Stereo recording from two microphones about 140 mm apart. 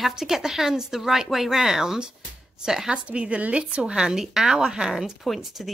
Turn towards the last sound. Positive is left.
turn(degrees=0)  # may be behind; listen again after turning